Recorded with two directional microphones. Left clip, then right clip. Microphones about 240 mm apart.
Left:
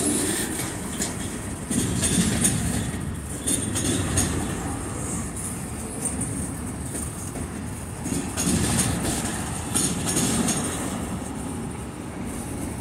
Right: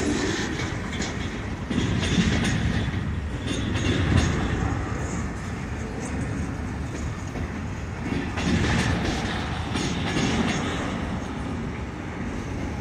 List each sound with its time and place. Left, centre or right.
0.1 s vehicle: left
1.7 s vehicle: left
3.4 s a sound: left
8.1 s vehicle: left
9.8 s music: left